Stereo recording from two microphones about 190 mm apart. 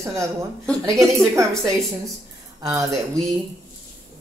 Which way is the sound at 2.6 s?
15° right (ahead or behind).